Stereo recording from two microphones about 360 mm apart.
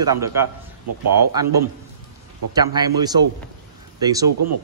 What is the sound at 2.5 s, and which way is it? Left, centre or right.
Speech, centre.